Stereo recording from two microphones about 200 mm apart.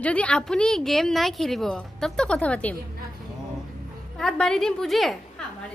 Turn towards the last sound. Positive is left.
turn(degrees=0)  # may be behind; listen again after turning